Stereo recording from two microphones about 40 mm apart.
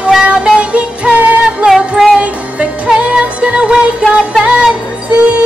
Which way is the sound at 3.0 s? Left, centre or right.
Right.